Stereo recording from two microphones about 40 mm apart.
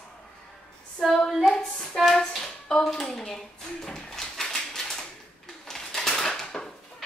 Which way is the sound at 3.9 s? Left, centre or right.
Centre.